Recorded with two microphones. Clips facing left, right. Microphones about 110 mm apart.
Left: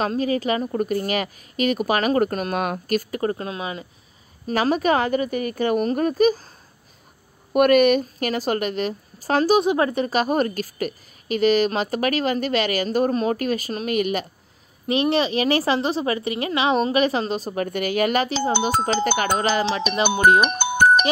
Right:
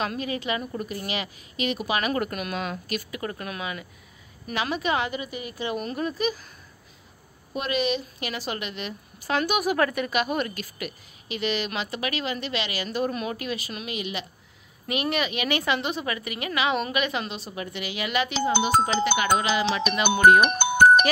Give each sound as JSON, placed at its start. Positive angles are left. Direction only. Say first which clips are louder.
{"t": 0.0, "sound": "a woman's voice", "louder": "left 7 dB", "side_deg": 35}
{"t": 4.5, "sound": "a woman's voice", "louder": "left 7 dB", "side_deg": 40}
{"t": 7.5, "sound": "a woman's voice", "louder": "left 11 dB", "side_deg": 55}
{"t": 14.9, "sound": "a woman's voice", "louder": "left 7 dB", "side_deg": 30}
{"t": 19.9, "sound": "speech", "louder": "even", "side_deg": 30}